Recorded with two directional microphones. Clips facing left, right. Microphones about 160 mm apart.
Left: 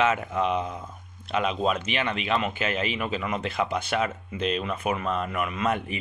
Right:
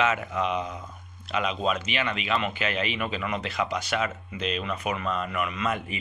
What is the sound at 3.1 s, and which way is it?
Speech, 30° left (ahead or behind).